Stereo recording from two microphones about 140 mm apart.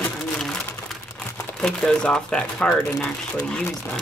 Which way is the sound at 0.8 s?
5° left (ahead or behind).